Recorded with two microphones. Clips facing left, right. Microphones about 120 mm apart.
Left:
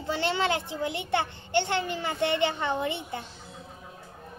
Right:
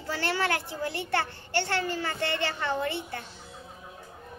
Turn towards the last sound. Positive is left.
turn(degrees=20)  # may be behind; listen again after turning